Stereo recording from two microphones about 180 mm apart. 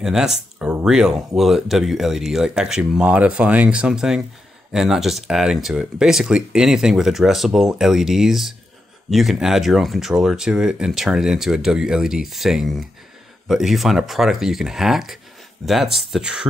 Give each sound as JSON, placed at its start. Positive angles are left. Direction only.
{"t": 0.0, "sound": "speech", "side_deg": 0}